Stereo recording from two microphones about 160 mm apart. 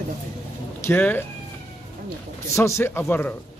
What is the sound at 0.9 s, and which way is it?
Speech, 10° left (ahead or behind).